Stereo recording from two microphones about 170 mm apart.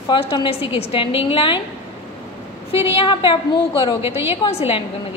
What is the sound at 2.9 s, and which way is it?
A woman's voice, 30° left (ahead or behind).